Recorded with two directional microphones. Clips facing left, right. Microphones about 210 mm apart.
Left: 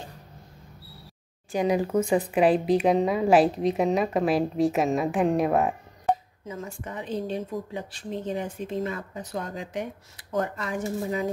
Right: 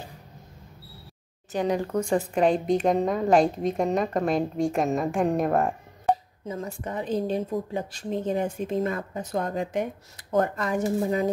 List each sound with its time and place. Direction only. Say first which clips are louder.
1.5 s speech: left 2 dB; 10° left (ahead or behind)
6.4 s a woman's voice: right 3 dB; 35° right (ahead or behind)